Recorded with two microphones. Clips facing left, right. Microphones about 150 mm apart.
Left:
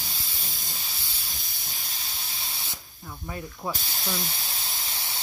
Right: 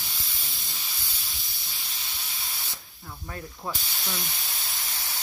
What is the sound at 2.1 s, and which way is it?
Spray, 30° left (ahead or behind).